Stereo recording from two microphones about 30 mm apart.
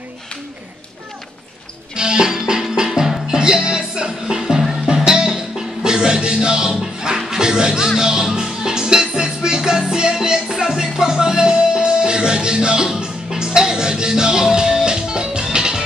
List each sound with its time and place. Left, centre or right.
2.0 s music: right
4.4 s music: centre